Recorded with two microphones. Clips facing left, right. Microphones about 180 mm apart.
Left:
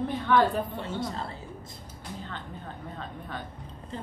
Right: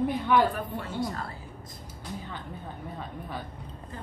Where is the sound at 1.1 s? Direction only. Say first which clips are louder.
Left 1 dB; 25° left (ahead or behind).